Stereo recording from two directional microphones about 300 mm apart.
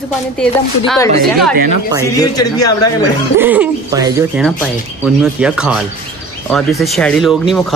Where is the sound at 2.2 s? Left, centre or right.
Centre.